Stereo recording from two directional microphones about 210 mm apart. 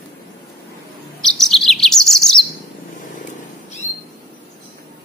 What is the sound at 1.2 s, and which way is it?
Bird, centre (ahead or behind).